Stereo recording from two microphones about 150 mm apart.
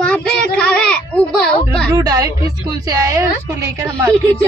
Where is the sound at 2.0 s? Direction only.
25° right (ahead or behind).